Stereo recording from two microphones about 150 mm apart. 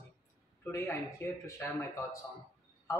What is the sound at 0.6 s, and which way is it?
A man's voice, 20° left (ahead or behind).